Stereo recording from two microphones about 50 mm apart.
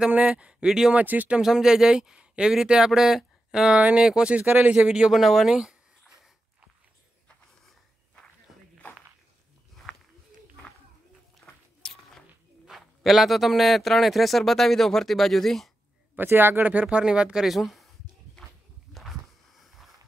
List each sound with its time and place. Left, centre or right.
0.1 s speech: right
0.7 s speech: centre
0.9 s speech: right
1.4 s speech: centre
3.6 s speech: right
4.3 s speech: right
4.7 s a man's voice: centre
9.9 s a sound: centre
11.4 s a sound: centre
12.6 s a man's voice: centre
16.2 s speech: right
16.8 s speech: centre
17.5 s a man's voice: centre
18.9 s a sound: centre